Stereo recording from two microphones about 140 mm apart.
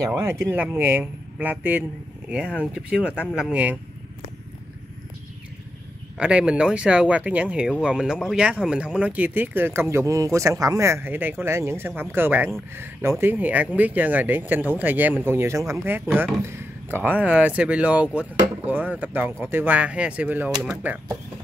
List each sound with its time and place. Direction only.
0.1 s speech: 15° right (ahead or behind)
6.1 s speech: 10° right (ahead or behind)